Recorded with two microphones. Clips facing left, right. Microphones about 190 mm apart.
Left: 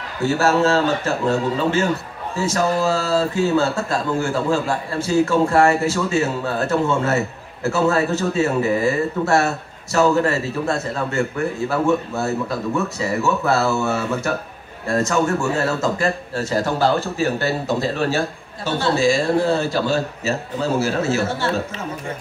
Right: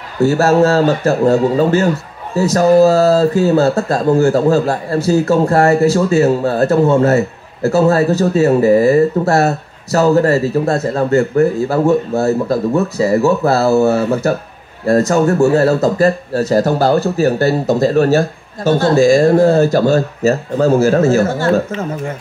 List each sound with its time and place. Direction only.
0.4 s a man's voice: 40° right (ahead or behind)